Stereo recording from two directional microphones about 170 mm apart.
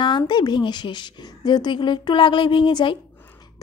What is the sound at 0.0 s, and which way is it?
A woman's voice, 25° left (ahead or behind).